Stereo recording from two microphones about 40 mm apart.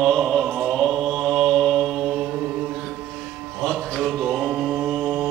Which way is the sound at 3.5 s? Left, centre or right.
Centre.